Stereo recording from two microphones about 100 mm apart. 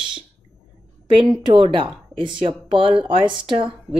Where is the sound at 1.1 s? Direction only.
55° right (ahead or behind).